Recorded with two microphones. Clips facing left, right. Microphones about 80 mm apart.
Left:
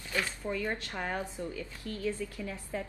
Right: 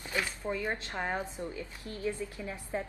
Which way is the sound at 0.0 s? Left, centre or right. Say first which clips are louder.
Even; right.